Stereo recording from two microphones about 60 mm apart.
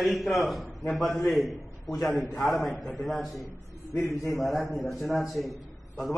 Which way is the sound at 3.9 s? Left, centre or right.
Left.